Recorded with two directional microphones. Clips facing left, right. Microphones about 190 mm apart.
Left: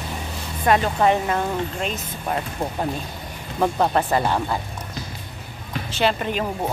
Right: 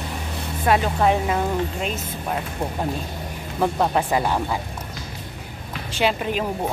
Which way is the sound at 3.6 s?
Centre (ahead or behind).